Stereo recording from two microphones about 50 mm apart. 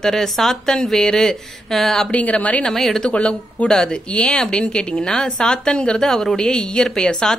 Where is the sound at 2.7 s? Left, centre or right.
Centre.